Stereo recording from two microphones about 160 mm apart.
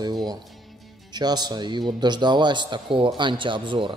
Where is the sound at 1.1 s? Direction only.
25° right (ahead or behind).